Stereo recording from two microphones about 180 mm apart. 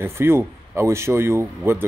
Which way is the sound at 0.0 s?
15° right (ahead or behind).